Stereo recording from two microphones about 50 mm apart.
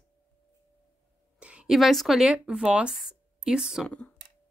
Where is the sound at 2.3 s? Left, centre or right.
Centre.